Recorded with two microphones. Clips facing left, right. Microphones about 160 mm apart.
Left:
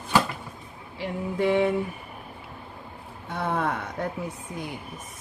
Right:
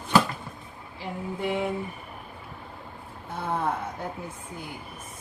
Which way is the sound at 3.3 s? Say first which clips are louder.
Left 1 dB; 75° left (ahead or behind).